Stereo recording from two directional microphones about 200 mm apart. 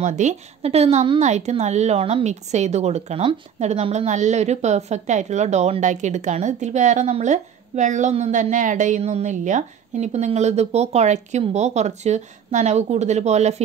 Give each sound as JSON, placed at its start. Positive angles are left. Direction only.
{"t": 0.0, "sound": "a woman's voice", "side_deg": -35}